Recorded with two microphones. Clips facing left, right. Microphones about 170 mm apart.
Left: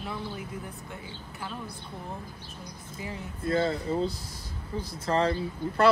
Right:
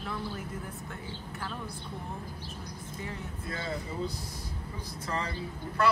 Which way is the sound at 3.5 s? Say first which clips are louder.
Left 10 dB; 30° left (ahead or behind).